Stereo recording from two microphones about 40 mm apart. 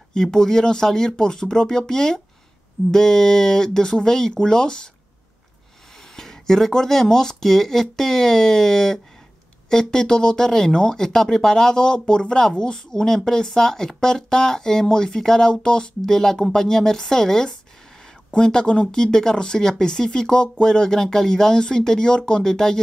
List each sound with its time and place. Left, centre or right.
0.1 s speech: centre
6.1 s speech: centre